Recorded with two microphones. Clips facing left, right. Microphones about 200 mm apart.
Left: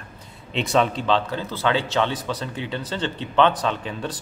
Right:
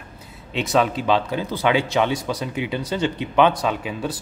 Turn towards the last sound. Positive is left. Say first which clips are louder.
# right 2 dB
turn(degrees=-10)  # may be behind; listen again after turning